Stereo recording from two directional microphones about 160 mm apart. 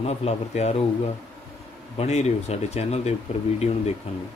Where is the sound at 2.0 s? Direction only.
40° left (ahead or behind).